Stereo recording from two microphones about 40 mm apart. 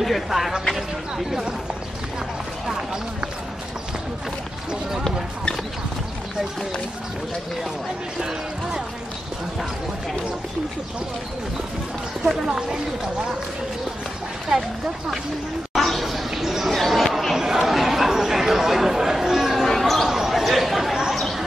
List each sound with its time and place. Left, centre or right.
0.0 s speech: centre
8.2 s speech: centre
12.3 s speech: centre
14.5 s speech: centre
15.8 s a sound: centre
16.7 s chatter: centre
17.4 s chatter: centre
19.7 s basketball bounce: centre
20.1 s a sound: centre